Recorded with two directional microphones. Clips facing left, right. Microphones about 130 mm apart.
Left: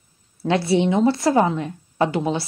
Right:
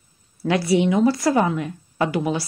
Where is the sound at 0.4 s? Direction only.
25° left (ahead or behind).